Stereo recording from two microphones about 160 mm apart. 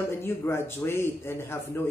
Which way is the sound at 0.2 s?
15° left (ahead or behind).